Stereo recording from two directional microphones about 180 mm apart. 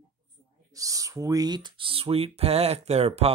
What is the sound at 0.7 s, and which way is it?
Speech, 20° right (ahead or behind).